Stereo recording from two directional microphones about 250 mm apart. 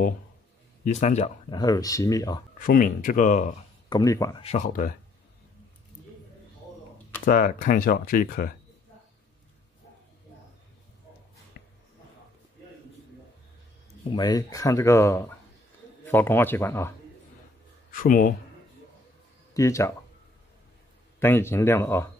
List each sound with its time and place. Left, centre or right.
0.8 s speech: left
1.6 s speech: centre
2.6 s speech: left
3.9 s speech: centre; by 4.9 s left
7.2 s speech: left
11.6 s a sound: left
14.1 s speech: centre
17.9 s speech: left
19.5 s speech: centre
21.2 s speech: centre